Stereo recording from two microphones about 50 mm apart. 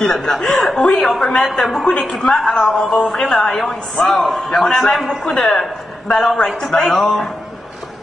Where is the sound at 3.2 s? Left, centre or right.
Centre.